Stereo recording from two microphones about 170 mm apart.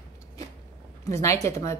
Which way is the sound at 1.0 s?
20° left (ahead or behind).